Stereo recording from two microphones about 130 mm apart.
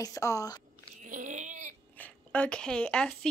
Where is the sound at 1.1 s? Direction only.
70° right (ahead or behind).